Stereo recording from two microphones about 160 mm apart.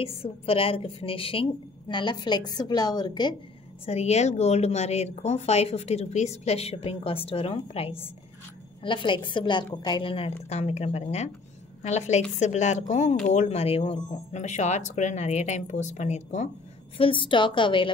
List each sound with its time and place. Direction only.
0.0 s a woman's voice: 35° left (ahead or behind)
3.8 s a woman's voice: 40° left (ahead or behind)
16.9 s a woman's voice: 35° left (ahead or behind)